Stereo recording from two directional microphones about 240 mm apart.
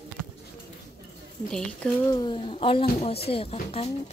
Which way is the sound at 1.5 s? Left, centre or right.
Centre.